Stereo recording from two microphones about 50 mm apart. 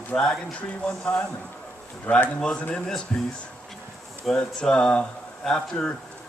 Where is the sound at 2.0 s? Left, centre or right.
Left.